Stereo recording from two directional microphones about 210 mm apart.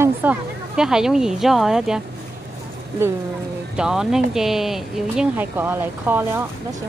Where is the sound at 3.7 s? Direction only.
5° right (ahead or behind).